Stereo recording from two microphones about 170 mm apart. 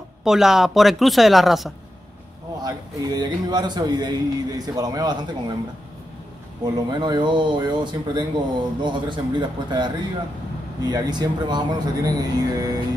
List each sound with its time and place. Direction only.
0.2 s speech: centre (ahead or behind)
2.6 s speech: 25° right (ahead or behind)
6.6 s speech: 25° right (ahead or behind)